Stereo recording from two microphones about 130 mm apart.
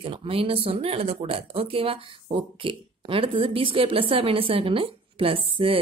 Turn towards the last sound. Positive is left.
turn(degrees=-45)  # may be behind; listen again after turning